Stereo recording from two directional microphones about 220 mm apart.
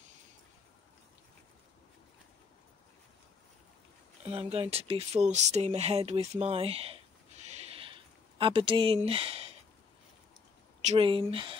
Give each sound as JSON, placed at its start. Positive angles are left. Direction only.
{"t": 4.2, "sound": "speech", "side_deg": -25}
{"t": 7.6, "sound": "a sound", "side_deg": -25}
{"t": 10.8, "sound": "speech", "side_deg": -30}